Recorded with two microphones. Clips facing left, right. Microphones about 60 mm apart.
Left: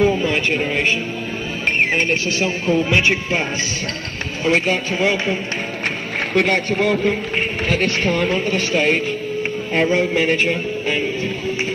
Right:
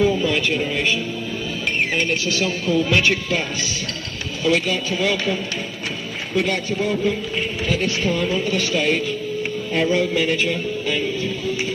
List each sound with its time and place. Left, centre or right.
0.0 s a sound: left
0.6 s speech: left
5.9 s a man's voice: left
8.5 s speech: left